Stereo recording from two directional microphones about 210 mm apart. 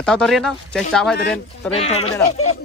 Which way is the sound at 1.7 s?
30° left (ahead or behind).